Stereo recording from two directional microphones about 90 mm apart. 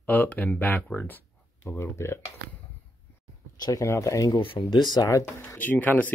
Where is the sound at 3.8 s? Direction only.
35° left (ahead or behind).